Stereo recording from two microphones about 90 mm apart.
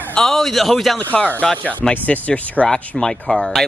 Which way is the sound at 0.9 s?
15° left (ahead or behind).